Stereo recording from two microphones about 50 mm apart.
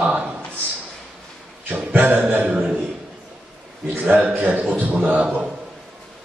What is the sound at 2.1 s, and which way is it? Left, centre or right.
Speech, right.